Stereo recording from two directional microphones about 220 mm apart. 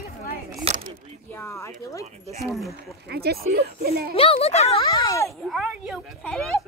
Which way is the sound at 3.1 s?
45° right (ahead or behind).